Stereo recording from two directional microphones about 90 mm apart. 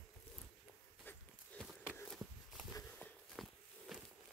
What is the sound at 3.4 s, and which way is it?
Walk, centre (ahead or behind).